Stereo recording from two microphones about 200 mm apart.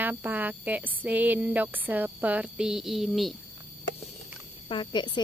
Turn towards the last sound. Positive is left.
turn(degrees=25)  # may be behind; listen again after turning